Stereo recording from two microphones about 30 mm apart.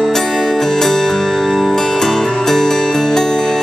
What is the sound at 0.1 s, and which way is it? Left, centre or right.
Music, centre.